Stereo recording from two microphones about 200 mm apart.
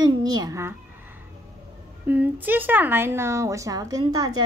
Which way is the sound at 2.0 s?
10° right (ahead or behind).